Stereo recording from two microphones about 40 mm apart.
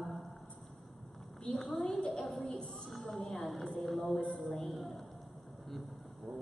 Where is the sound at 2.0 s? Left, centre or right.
Left.